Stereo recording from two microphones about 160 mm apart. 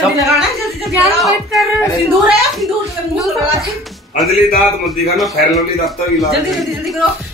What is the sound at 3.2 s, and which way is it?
Speech, centre (ahead or behind).